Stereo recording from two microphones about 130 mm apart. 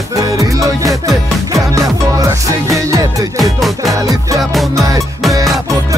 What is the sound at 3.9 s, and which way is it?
Speech, 25° right (ahead or behind).